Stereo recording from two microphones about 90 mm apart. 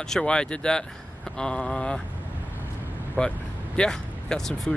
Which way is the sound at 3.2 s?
15° left (ahead or behind).